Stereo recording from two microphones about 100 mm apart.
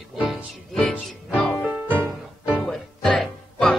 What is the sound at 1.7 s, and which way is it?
Music, 15° right (ahead or behind).